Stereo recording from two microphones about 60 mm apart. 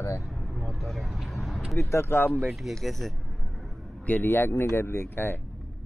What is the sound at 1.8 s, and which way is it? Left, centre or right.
Speech, left.